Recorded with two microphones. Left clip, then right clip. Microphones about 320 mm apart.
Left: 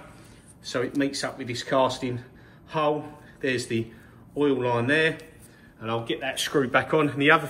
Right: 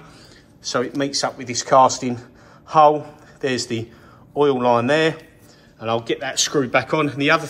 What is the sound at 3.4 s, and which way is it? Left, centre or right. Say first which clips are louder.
A man's voice: right 4 dB; centre.